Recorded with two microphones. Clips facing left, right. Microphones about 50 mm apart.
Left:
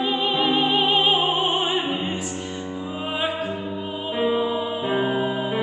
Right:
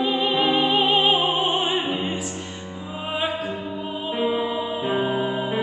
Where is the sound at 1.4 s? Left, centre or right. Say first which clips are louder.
Even; left.